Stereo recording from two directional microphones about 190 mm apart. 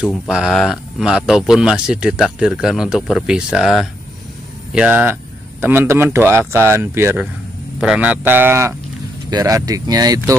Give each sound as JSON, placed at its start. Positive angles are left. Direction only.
{"t": 0.0, "sound": "speech", "side_deg": -5}